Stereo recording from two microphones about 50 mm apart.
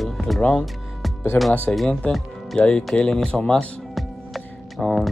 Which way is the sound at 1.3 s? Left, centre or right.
Left.